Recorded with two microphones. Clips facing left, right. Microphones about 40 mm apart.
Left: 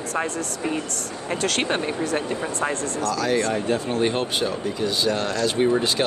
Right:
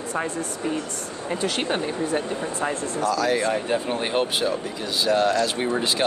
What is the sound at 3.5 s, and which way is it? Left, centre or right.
Speech, centre.